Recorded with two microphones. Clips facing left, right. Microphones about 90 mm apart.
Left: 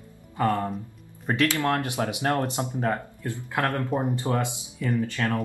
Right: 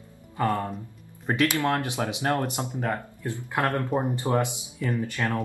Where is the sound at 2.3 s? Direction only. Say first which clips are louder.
Left 1 dB; 25° left (ahead or behind).